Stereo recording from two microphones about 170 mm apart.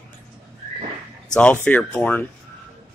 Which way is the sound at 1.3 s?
5° left (ahead or behind).